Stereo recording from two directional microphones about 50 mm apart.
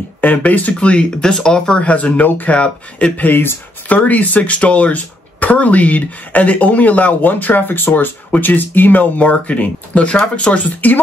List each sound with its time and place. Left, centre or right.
0.2 s speech: left
0.7 s speech: centre
1.8 s speech: left
3.3 s speech: left